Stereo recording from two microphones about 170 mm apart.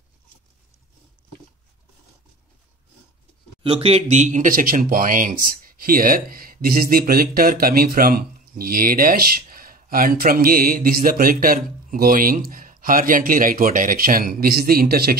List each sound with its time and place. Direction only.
3.6 s speech: 35° right (ahead or behind); by 15.1 s 60° right (ahead or behind)